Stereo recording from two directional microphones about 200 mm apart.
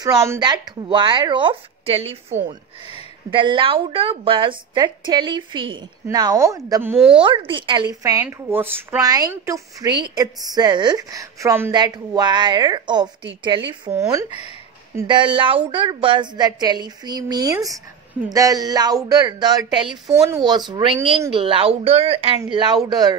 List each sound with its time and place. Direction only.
0.0 s speech: 15° right (ahead or behind)
7.2 s speech: 25° right (ahead or behind)